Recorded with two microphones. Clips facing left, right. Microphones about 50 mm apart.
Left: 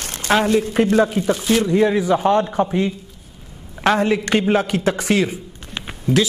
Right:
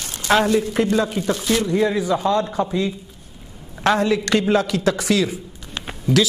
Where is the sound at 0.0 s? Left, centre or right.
Left.